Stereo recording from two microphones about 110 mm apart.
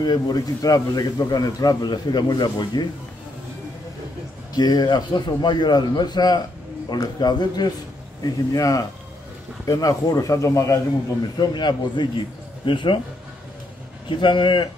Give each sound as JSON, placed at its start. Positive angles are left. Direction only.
{"t": 0.0, "sound": "a man's voice", "side_deg": 40}
{"t": 4.6, "sound": "a man's voice", "side_deg": 40}
{"t": 11.3, "sound": "a man's voice", "side_deg": 45}
{"t": 14.0, "sound": "a man's voice", "side_deg": 50}